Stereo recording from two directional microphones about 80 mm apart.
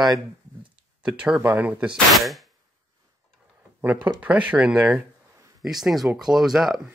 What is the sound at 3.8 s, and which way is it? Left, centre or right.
Speech, centre.